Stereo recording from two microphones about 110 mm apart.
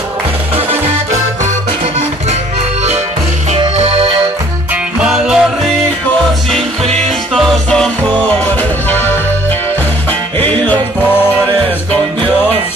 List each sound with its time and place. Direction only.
0.6 s music: 65° right (ahead or behind)
3.7 s music: 70° right (ahead or behind)
5.0 s music: 5° right (ahead or behind)
7.1 s music: centre (ahead or behind)
10.4 s music: 45° right (ahead or behind)